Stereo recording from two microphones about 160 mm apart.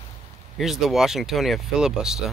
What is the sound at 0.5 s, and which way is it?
Speech, centre (ahead or behind).